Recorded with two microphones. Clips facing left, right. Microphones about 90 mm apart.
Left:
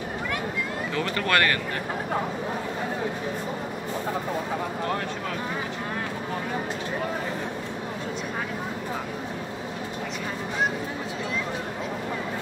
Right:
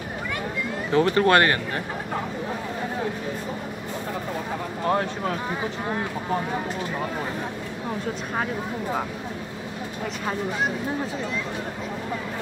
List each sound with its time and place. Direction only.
0.9 s speech: 30° right (ahead or behind)